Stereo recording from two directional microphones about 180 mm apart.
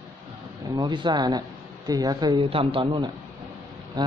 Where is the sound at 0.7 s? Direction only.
25° right (ahead or behind).